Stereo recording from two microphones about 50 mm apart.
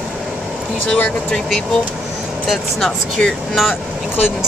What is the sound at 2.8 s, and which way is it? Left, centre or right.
Speech, centre.